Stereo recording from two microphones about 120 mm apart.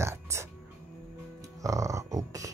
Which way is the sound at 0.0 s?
25° right (ahead or behind).